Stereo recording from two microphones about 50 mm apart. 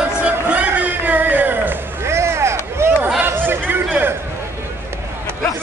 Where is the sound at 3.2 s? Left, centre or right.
Right.